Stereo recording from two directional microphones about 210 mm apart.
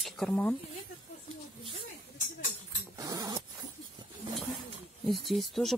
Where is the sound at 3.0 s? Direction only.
15° right (ahead or behind).